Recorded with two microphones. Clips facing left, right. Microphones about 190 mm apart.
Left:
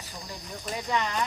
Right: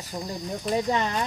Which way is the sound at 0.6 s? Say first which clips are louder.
Right 5 dB; 35° right (ahead or behind).